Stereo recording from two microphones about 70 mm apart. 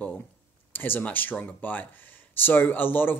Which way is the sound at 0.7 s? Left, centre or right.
Left.